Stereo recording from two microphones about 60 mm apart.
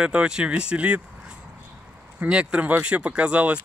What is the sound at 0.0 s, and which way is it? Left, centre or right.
Speech, centre.